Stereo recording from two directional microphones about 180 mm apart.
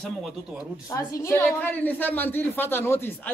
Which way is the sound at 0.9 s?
15° left (ahead or behind).